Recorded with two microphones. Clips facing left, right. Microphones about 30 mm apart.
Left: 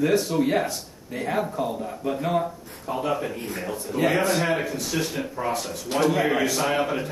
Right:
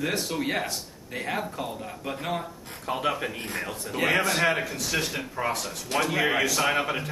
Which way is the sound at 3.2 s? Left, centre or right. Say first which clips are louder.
Left 1 dB; right.